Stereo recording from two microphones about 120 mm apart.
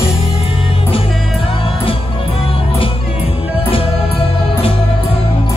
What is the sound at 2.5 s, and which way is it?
Music, 50° left (ahead or behind).